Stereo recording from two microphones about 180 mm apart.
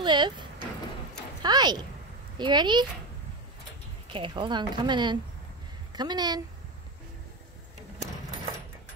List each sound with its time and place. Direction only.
0.0 s a sound: 25° right (ahead or behind)
2.3 s speech: 25° right (ahead or behind)
4.1 s speech: 25° right (ahead or behind)